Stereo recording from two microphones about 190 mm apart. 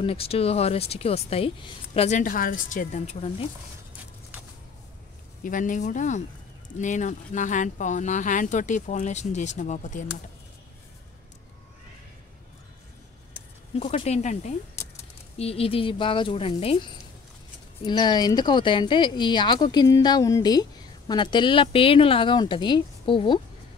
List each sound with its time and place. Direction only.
0.0 s speech: 30° left (ahead or behind)
5.4 s speech: 45° left (ahead or behind)
13.7 s speech: 35° left (ahead or behind)